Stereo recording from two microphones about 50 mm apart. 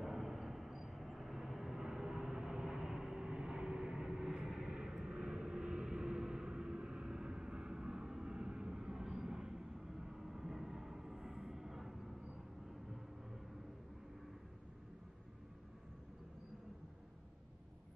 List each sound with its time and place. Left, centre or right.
0.0 s vehicle: centre